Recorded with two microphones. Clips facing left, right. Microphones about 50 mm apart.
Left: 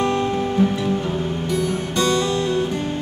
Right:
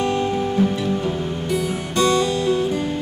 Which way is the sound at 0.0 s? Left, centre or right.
Left.